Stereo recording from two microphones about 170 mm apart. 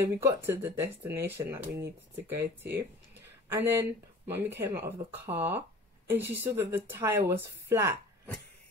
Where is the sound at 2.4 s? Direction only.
75° right (ahead or behind).